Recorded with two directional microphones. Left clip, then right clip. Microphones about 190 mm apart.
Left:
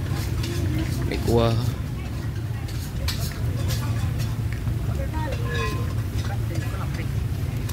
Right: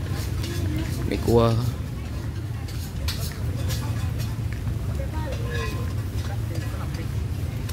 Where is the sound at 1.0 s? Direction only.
60° right (ahead or behind).